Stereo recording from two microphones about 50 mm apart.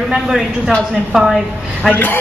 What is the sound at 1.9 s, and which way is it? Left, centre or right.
Speech, left.